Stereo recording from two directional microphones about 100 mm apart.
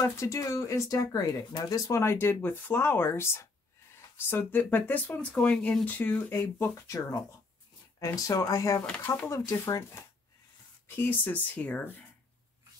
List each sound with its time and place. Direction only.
0.0 s speech: 30° left (ahead or behind)
8.8 s speech: 15° left (ahead or behind)
9.5 s speech: 35° left (ahead or behind)
11.0 s speech: 20° left (ahead or behind)